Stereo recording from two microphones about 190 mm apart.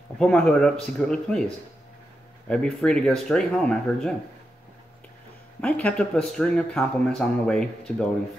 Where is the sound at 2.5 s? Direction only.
5° left (ahead or behind).